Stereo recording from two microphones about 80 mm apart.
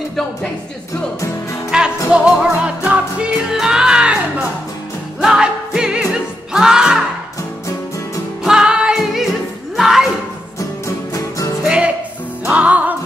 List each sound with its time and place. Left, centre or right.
0.1 s speech: centre
1.7 s music: centre
5.2 s music: centre
8.5 s music: centre
11.1 s music: left
11.6 s music: centre